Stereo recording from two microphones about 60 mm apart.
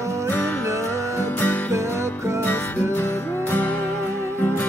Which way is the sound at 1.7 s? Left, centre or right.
Right.